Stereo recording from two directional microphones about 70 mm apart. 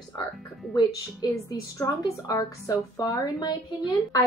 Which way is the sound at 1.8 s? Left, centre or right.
Left.